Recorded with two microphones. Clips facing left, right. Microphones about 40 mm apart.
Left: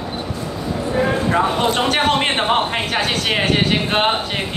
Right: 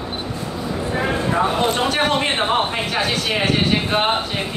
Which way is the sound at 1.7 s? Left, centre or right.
Left.